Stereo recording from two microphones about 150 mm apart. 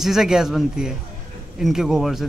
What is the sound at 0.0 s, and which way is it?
Speech, centre (ahead or behind).